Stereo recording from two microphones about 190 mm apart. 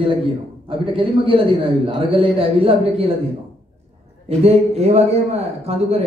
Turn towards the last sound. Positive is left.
turn(degrees=-35)  # may be behind; listen again after turning